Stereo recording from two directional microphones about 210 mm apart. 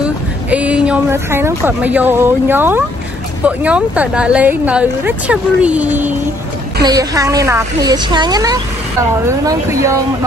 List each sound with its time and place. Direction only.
0.0 s speech: 5° right (ahead or behind)